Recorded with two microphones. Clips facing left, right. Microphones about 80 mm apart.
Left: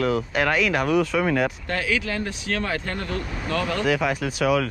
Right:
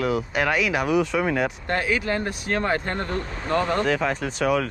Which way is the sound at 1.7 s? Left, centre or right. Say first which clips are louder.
Right 2 dB; right.